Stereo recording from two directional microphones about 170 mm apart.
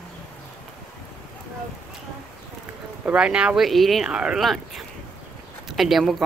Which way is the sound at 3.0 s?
5° right (ahead or behind).